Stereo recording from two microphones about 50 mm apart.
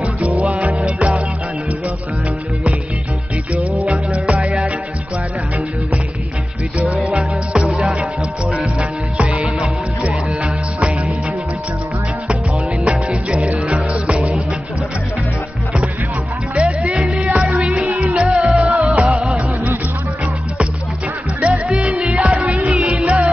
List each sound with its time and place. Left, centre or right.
0.4 s music: right
3.8 s music: right
6.8 s music: right
9.2 s music: right
12.8 s music: centre
16.5 s music: right
21.4 s music: right